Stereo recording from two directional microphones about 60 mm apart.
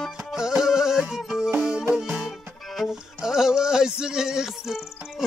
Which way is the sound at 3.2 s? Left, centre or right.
Centre.